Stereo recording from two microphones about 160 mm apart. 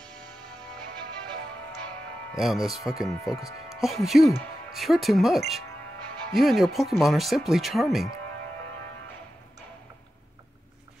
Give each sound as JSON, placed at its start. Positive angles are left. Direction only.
{"t": 0.0, "sound": "music", "side_deg": 5}
{"t": 2.4, "sound": "speech", "side_deg": 0}
{"t": 3.3, "sound": "speech", "side_deg": 20}
{"t": 3.7, "sound": "speech", "side_deg": 0}